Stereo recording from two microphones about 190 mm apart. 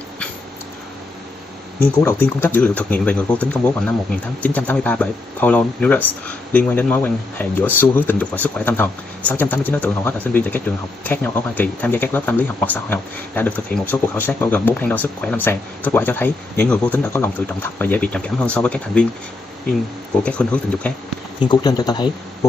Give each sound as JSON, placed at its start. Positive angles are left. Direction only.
{"t": 2.0, "sound": "speech", "side_deg": 10}
{"t": 20.2, "sound": "speech", "side_deg": 5}
{"t": 21.5, "sound": "speech", "side_deg": 20}